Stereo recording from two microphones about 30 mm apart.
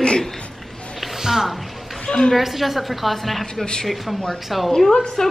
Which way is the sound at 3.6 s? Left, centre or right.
Left.